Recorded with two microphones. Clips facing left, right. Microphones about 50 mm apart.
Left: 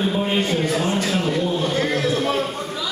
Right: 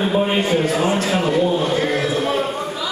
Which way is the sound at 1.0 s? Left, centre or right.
Centre.